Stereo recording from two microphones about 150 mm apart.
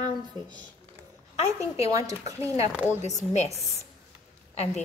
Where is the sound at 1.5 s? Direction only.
20° right (ahead or behind).